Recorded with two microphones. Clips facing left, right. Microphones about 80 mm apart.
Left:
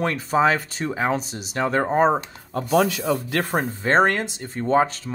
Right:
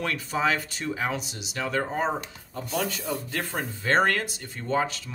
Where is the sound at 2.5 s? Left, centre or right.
Left.